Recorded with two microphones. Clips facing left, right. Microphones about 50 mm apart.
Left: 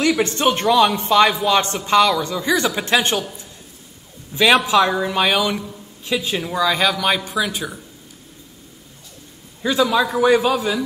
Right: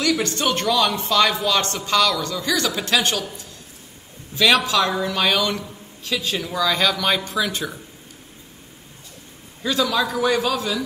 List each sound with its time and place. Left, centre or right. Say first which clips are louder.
0.0 s a woman's voice: left 4 dB; left; by 7.8 s centre
9.6 s a woman's voice: left 4 dB; centre